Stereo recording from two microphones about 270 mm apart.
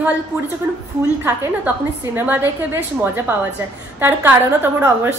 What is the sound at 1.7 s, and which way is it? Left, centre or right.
A woman's voice, centre.